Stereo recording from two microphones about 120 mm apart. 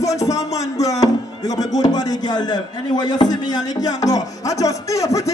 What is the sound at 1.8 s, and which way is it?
Speech, 35° left (ahead or behind).